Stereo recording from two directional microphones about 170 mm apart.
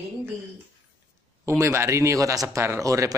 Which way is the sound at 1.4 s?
15° right (ahead or behind).